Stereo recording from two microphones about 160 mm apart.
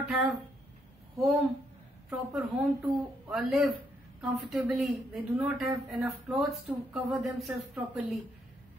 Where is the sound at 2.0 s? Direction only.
Centre (ahead or behind).